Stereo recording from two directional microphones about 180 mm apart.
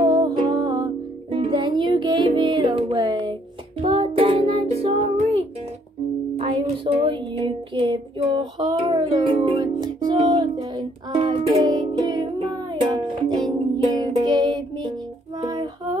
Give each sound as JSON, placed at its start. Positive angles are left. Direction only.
{"t": 0.0, "sound": "music", "side_deg": -25}
{"t": 6.3, "sound": "a sound", "side_deg": -30}
{"t": 11.4, "sound": "music", "side_deg": -25}